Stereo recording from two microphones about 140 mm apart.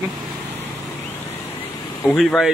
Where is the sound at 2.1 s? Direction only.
5° left (ahead or behind).